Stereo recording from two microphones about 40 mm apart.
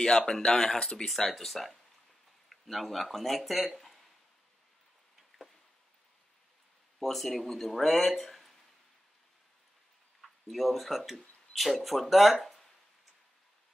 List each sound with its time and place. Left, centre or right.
0.0 s speech: centre
7.0 s speech: centre
10.2 s speech: centre